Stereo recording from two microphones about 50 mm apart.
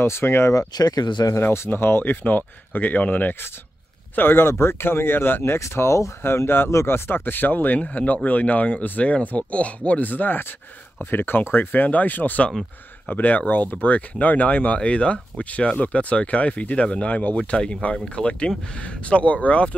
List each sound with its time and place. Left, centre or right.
0.0 s speech: left
1.7 s speech: left
2.2 s speech: left
4.1 s speech: left
5.4 s speech: left
6.2 s speech: left
11.0 s speech: left